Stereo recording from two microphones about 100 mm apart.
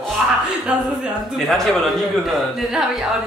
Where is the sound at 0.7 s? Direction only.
10° right (ahead or behind).